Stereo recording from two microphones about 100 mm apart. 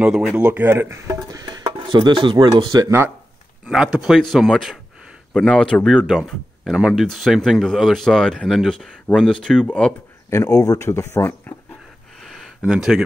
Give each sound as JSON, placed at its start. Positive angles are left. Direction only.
{"t": 0.0, "sound": "speech", "side_deg": -5}
{"t": 0.4, "sound": "speech", "side_deg": -20}
{"t": 1.7, "sound": "dishes", "side_deg": -55}
{"t": 3.7, "sound": "speech", "side_deg": -5}
{"t": 10.3, "sound": "speech", "side_deg": 35}
{"t": 12.2, "sound": "a sound", "side_deg": 0}